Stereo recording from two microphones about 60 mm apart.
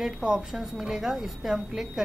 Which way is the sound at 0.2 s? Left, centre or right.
Centre.